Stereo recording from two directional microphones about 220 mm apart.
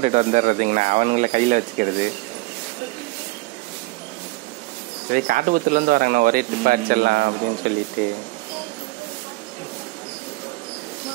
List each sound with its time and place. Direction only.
0.0 s a man's voice: 30° right (ahead or behind)
5.1 s a man's voice: 40° right (ahead or behind)